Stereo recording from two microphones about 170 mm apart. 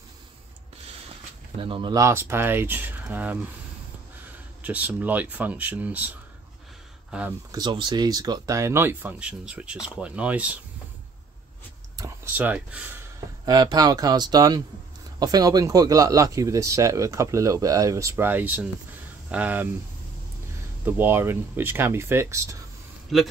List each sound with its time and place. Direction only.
1.6 s speech: 30° right (ahead or behind); by 3.3 s 10° right (ahead or behind)
4.6 s speech: 10° right (ahead or behind)
7.5 s speech: 25° right (ahead or behind); by 10.6 s 10° right (ahead or behind)
12.4 s speech: 10° right (ahead or behind)
13.5 s speech: 25° right (ahead or behind)
20.8 s speech: 15° right (ahead or behind)
23.1 s a man's voice: centre (ahead or behind)